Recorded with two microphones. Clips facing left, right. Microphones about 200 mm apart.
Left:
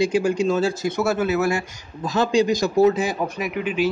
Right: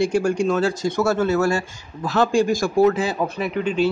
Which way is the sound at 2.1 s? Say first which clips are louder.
Right 1 dB; 50° right (ahead or behind).